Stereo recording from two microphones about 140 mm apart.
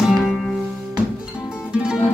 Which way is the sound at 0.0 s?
Centre (ahead or behind).